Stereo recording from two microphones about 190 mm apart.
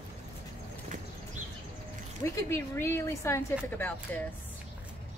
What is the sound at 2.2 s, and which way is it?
A woman's voice, 15° left (ahead or behind).